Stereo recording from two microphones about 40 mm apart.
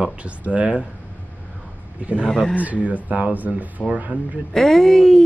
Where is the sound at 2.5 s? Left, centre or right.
Right.